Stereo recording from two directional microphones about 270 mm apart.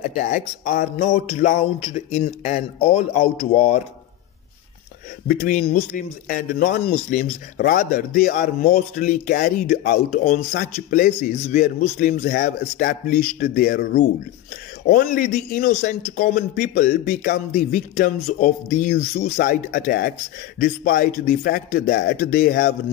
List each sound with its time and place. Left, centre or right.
0.2 s speech: left
5.4 s a man's voice: left